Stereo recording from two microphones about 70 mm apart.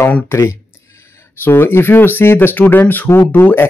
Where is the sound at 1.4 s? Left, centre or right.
Left.